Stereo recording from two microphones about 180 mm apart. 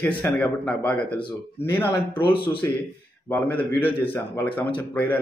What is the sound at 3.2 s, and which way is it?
Speech, 10° left (ahead or behind).